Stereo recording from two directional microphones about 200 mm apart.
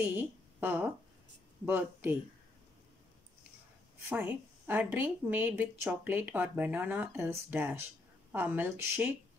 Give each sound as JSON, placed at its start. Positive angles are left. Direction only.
{"t": 0.6, "sound": "speech", "side_deg": -10}
{"t": 4.1, "sound": "a woman's voice", "side_deg": -10}